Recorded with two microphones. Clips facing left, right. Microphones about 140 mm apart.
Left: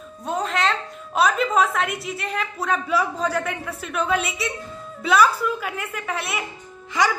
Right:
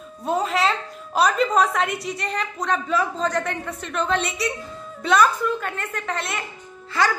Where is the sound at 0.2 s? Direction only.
Centre (ahead or behind).